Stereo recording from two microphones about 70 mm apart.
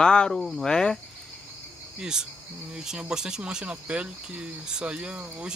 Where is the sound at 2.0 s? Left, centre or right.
Centre.